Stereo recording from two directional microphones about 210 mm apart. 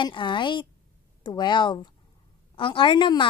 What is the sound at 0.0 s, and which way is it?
A woman's voice, 20° left (ahead or behind).